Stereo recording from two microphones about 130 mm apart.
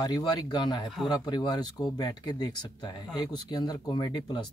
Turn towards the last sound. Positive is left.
turn(degrees=35)  # may be behind; listen again after turning